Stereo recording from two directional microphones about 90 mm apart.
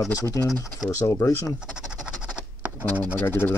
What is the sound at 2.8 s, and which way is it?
Speech, 20° left (ahead or behind).